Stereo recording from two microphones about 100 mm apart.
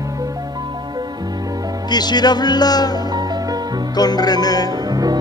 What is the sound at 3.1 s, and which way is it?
Music, 45° right (ahead or behind).